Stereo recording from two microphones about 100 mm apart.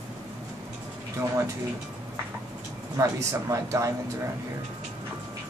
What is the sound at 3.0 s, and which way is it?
Speech, 30° right (ahead or behind).